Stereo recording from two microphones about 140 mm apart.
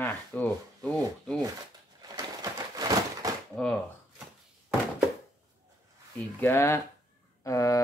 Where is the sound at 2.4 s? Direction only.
25° right (ahead or behind).